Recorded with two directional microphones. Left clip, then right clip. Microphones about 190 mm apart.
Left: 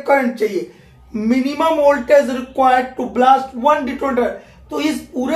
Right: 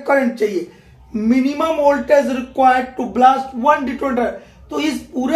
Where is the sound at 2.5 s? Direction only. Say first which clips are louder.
Even; 25° right (ahead or behind).